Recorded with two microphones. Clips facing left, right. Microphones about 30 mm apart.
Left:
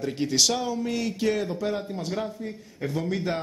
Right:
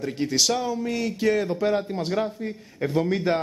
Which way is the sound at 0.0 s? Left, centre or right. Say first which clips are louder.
Even; centre.